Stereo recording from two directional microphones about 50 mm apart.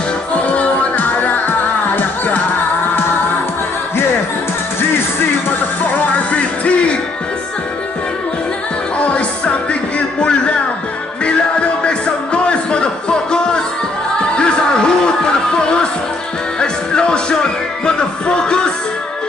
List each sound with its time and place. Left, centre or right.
0.4 s music: left
6.3 s music: left
8.9 s music: left
11.8 s music: left
16.5 s music: centre